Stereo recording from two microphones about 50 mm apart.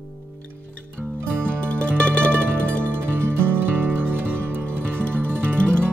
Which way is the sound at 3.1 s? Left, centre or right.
Right.